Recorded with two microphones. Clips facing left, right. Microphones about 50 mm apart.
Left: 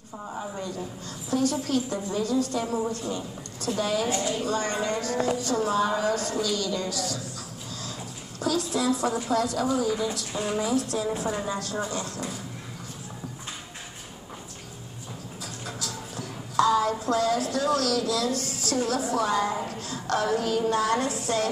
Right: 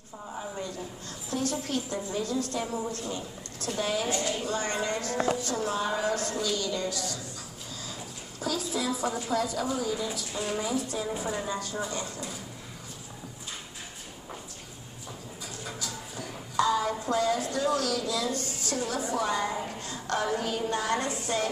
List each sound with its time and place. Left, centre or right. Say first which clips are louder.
1.3 s a woman's voice: left 5 dB; centre
2.5 s a woman's voice: left 4 dB; centre
3.7 s speech: left 3 dB; centre
5.1 s a woman's voice: left 1 dB; centre
5.7 s a woman's voice: left 4 dB; centre
8.4 s a woman's voice: left 5 dB; centre
10.3 s a woman's voice: left 2 dB; centre
10.6 s a woman's voice: left 4 dB; centre
11.2 s a woman's voice: left 3 dB; centre
11.5 s speech: left 3 dB; centre
15.6 s music: left 2 dB; centre
17.0 s a woman's voice: left 3 dB; centre